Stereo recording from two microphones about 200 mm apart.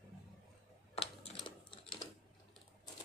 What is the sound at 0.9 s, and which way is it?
Typing, 30° left (ahead or behind).